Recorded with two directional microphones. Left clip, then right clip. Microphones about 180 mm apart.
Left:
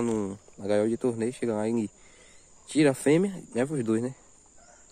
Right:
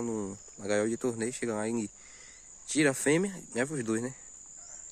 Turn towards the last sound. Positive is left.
turn(degrees=-5)  # may be behind; listen again after turning